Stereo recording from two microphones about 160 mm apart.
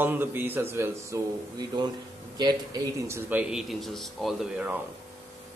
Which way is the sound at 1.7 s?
25° right (ahead or behind).